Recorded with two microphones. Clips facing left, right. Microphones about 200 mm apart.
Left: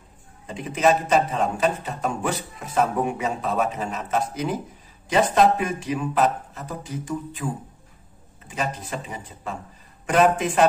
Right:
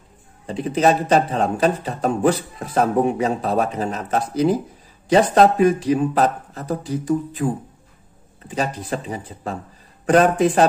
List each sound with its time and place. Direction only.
0.5 s a man's voice: 35° right (ahead or behind)